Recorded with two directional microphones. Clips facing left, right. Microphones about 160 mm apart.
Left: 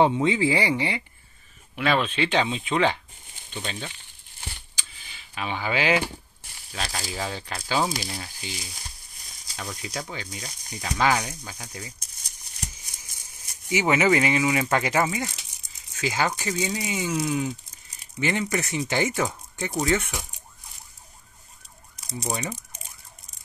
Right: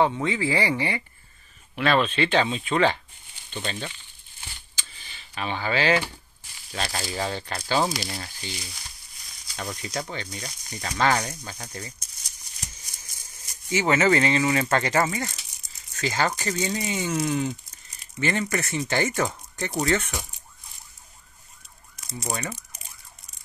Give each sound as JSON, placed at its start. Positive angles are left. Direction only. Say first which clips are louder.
{"t": 0.0, "sound": "speech", "louder": "left 3 dB", "side_deg": 20}
{"t": 4.7, "sound": "vehicle", "louder": "even", "side_deg": 10}
{"t": 6.7, "sound": "speech", "louder": "right 2 dB", "side_deg": 0}
{"t": 9.6, "sound": "speech", "louder": "right 2 dB", "side_deg": 5}
{"t": 12.3, "sound": "a sound", "louder": "left 5 dB", "side_deg": 55}
{"t": 13.7, "sound": "speech", "louder": "even", "side_deg": 15}
{"t": 18.2, "sound": "speech", "louder": "even", "side_deg": 15}
{"t": 22.3, "sound": "speech", "louder": "left 1 dB", "side_deg": 15}